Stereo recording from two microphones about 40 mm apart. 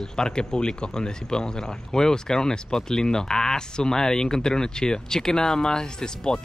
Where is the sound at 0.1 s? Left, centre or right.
Centre.